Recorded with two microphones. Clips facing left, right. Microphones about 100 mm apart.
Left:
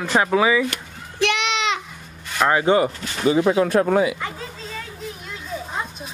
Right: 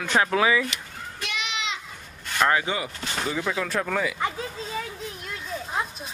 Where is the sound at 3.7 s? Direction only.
25° left (ahead or behind).